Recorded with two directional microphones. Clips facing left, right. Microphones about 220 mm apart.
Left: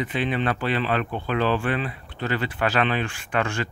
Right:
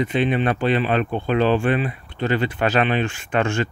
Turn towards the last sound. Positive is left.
turn(degrees=-25)  # may be behind; listen again after turning